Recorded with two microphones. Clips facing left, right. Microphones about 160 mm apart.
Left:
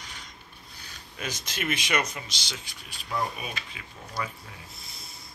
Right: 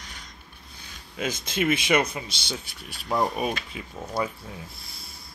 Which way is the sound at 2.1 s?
60° right (ahead or behind).